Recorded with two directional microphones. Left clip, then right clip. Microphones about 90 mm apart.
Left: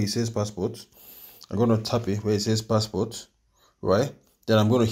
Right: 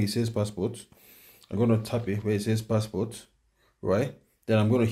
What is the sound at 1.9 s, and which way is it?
Speech, 50° left (ahead or behind).